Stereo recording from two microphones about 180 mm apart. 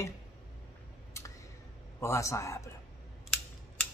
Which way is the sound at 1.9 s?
15° left (ahead or behind).